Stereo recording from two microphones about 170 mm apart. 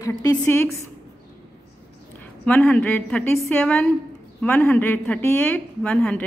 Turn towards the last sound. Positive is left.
turn(degrees=5)  # may be behind; listen again after turning